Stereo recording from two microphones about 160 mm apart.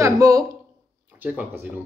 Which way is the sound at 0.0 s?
20° right (ahead or behind).